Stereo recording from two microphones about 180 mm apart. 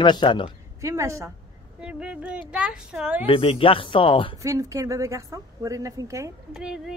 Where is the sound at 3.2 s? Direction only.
30° left (ahead or behind).